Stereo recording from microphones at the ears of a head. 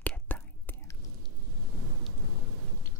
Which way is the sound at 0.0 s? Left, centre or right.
Centre.